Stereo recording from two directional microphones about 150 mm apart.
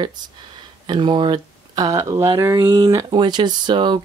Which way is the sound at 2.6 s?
30° right (ahead or behind).